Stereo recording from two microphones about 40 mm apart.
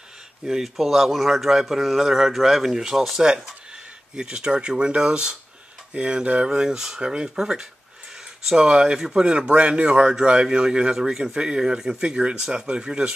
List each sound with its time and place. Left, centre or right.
0.5 s speech: centre
4.1 s speech: right